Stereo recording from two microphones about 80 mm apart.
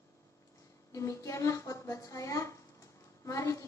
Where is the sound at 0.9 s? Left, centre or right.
Left.